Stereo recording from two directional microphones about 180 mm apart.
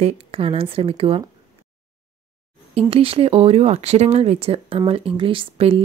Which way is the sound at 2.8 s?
30° right (ahead or behind).